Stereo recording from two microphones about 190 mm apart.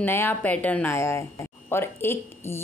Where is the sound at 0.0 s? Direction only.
10° left (ahead or behind).